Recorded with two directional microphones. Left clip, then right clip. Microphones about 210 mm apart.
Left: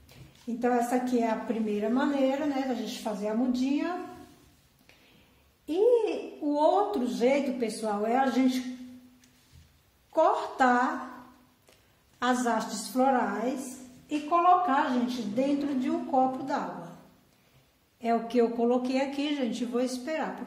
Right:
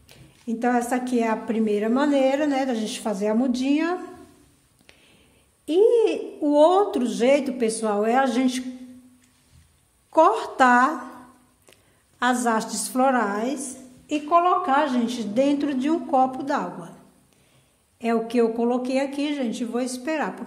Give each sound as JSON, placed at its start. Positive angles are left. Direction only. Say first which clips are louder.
{"t": 0.5, "sound": "a woman's voice", "louder": "right 4 dB", "side_deg": -40}
{"t": 6.4, "sound": "a woman's voice", "louder": "right 8 dB", "side_deg": -40}
{"t": 10.1, "sound": "a woman's voice", "louder": "right 7 dB", "side_deg": -40}
{"t": 12.2, "sound": "a woman's voice", "louder": "right 5 dB", "side_deg": -35}
{"t": 18.0, "sound": "speech", "louder": "right 4 dB", "side_deg": -35}